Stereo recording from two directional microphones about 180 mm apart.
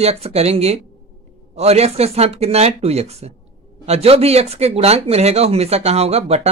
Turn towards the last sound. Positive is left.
turn(degrees=-35)  # may be behind; listen again after turning